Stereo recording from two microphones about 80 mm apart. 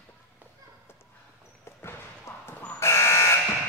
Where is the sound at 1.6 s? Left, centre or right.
Left.